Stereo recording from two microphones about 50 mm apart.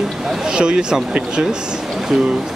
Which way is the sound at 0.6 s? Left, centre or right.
Centre.